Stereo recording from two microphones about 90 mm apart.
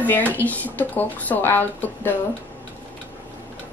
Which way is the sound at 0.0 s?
20° left (ahead or behind).